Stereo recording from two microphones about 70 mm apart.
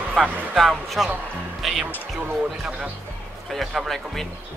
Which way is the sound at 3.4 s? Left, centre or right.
Centre.